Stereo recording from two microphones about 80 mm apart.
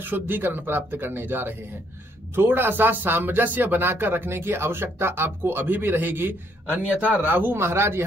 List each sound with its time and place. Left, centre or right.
0.0 s speech: right